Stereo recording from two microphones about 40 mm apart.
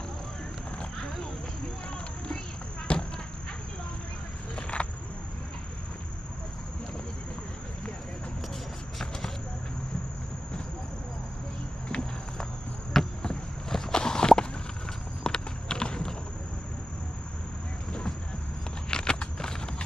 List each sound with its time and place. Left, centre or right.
0.7 s a sound: left
2.9 s horse: left
4.6 s a sound: left
12.9 s walk: centre
15.2 s clip-clop: centre
18.9 s walk: left